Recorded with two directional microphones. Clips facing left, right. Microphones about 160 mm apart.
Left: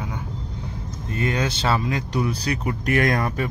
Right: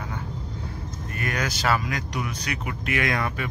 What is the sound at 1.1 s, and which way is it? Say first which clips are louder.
Speech: left 5 dB; 25° left (ahead or behind).